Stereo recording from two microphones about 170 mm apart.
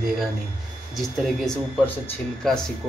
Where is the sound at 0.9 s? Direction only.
Centre (ahead or behind).